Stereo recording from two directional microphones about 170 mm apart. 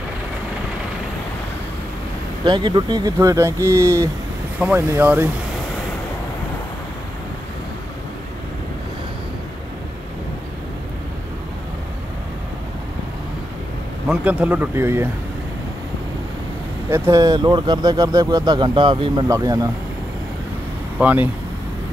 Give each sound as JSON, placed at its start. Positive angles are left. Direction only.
{"t": 2.4, "sound": "speech", "side_deg": -25}
{"t": 14.0, "sound": "speech", "side_deg": -5}
{"t": 16.9, "sound": "speech", "side_deg": -15}
{"t": 21.0, "sound": "speech", "side_deg": -10}